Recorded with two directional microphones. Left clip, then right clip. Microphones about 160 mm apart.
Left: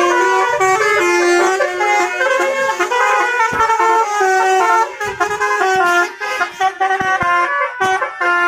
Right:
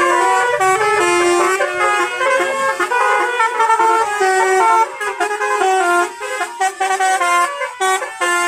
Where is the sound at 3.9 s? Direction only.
25° left (ahead or behind).